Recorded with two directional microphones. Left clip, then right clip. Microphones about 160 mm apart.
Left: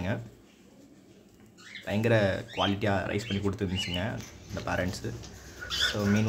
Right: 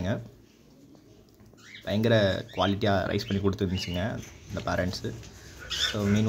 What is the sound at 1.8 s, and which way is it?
Speech, 25° right (ahead or behind).